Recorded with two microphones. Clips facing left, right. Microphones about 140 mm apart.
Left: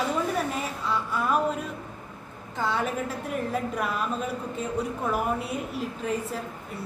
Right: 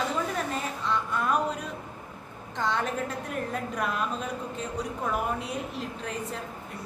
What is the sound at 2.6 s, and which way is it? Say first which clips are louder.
A woman's voice: left 1 dB; 5° left (ahead or behind).